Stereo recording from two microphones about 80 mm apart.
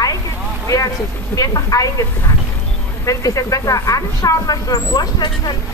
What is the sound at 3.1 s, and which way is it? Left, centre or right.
Speech, left.